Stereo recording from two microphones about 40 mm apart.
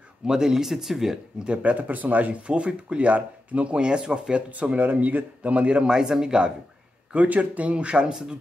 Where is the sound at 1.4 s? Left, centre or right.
Right.